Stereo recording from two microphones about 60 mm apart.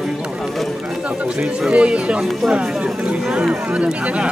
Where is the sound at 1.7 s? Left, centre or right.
Centre.